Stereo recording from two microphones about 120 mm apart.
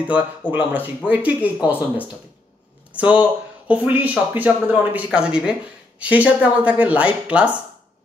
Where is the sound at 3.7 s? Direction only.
15° right (ahead or behind).